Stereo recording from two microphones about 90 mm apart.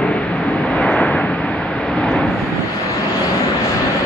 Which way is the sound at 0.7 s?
10° left (ahead or behind).